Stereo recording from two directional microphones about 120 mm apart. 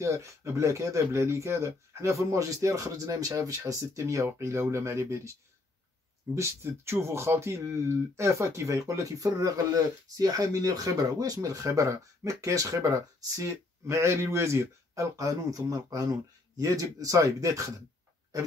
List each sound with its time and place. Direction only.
0.0 s speech: 25° right (ahead or behind)
6.3 s speech: 25° right (ahead or behind)